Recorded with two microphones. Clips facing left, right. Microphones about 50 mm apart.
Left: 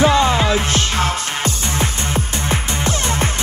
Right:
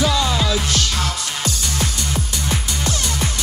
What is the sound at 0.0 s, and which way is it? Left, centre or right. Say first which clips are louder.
Music: left 5 dB; left.